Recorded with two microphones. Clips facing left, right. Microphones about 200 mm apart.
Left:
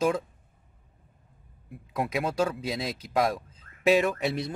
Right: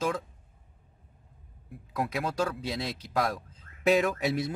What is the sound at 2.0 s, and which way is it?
Speech, 10° left (ahead or behind).